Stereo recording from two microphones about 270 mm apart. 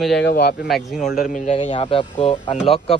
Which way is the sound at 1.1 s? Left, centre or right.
Left.